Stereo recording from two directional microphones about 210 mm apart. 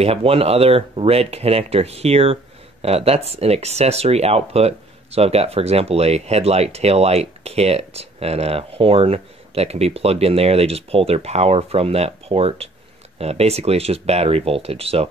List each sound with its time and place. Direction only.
0.0 s speech: 30° right (ahead or behind)